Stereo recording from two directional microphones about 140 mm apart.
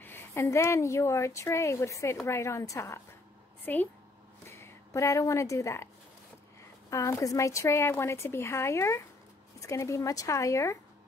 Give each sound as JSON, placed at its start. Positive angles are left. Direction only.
{"t": 0.0, "sound": "a woman's voice", "side_deg": 15}
{"t": 6.9, "sound": "speech", "side_deg": 20}